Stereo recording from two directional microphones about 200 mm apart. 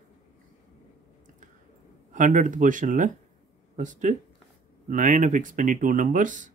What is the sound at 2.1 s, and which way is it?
Speech, 40° right (ahead or behind).